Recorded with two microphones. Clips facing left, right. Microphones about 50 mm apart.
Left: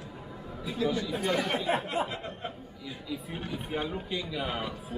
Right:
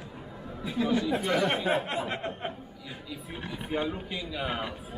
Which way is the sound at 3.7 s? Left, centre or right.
Centre.